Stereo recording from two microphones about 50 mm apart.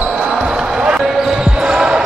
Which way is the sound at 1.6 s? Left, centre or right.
Centre.